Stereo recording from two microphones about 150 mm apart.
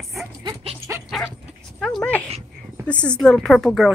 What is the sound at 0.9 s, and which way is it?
Dog, 20° right (ahead or behind).